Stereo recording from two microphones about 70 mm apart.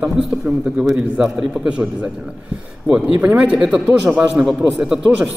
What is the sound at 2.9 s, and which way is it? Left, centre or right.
Speech, centre.